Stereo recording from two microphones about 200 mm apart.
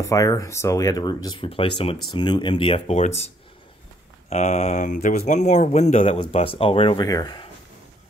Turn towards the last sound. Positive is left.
turn(degrees=20)  # may be behind; listen again after turning